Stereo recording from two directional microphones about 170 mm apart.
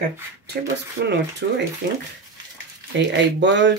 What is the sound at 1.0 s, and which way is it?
Speech, 80° right.